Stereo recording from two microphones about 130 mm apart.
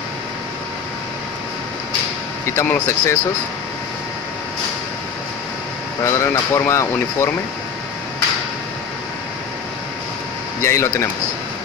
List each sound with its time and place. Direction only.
2.4 s speech: 20° left (ahead or behind)
6.0 s speech: 20° left (ahead or behind)
10.6 s speech: 20° left (ahead or behind)